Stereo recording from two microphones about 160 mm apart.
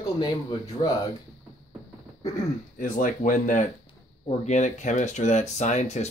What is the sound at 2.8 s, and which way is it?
Speech, 55° left (ahead or behind).